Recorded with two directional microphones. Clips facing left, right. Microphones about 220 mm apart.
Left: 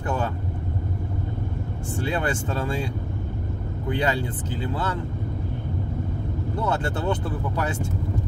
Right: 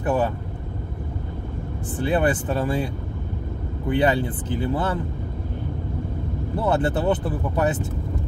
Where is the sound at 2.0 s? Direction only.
20° right (ahead or behind).